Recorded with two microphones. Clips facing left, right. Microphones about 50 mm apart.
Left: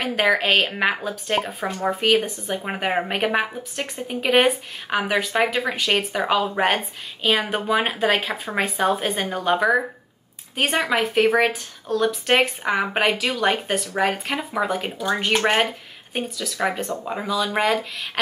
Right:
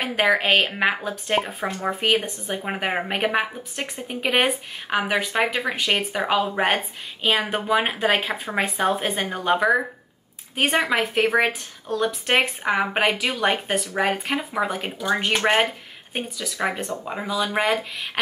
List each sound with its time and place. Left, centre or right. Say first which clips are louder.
0.0 s speech: even; centre